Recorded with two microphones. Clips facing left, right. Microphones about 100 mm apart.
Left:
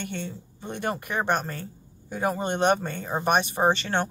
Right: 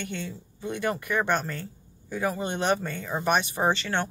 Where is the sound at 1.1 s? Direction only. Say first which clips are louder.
Even; 15° left (ahead or behind).